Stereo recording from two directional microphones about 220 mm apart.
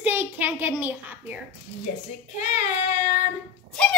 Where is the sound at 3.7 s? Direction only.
5° left (ahead or behind).